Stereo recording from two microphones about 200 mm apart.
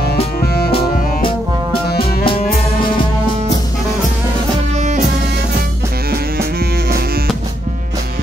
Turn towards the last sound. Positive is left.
turn(degrees=-50)  # may be behind; listen again after turning